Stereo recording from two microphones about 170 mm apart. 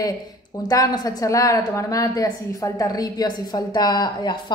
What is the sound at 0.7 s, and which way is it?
A woman's voice, 20° left (ahead or behind).